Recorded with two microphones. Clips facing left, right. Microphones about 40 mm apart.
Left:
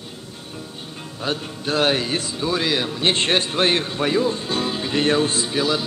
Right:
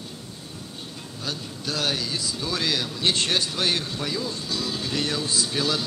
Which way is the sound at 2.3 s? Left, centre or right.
Left.